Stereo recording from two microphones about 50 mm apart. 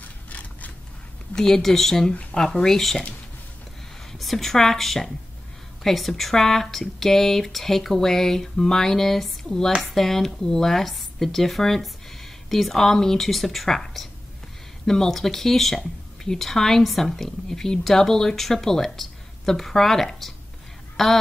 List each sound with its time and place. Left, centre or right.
0.0 s a sound: left
1.3 s speech: centre
4.1 s a woman's voice: centre